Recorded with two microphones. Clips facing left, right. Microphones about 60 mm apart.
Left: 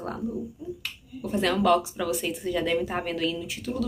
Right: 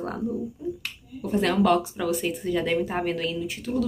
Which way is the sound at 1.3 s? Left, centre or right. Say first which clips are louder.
Right 1 dB; right.